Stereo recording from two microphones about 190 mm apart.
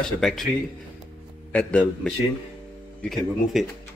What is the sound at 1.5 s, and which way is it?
Speech, 5° left (ahead or behind).